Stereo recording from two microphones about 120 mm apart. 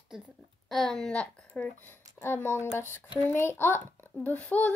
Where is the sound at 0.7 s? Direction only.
Centre (ahead or behind).